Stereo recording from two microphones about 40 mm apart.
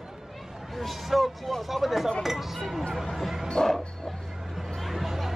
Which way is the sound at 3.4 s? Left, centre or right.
Centre.